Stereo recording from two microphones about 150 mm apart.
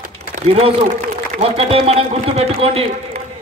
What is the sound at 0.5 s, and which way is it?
A man's voice, 40° right (ahead or behind).